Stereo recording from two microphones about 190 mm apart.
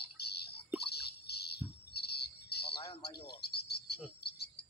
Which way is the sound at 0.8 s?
60° left (ahead or behind).